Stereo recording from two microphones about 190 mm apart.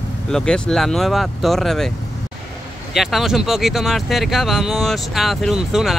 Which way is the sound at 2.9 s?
Centre (ahead or behind).